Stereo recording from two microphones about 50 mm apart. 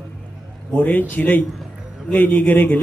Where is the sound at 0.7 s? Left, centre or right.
Left.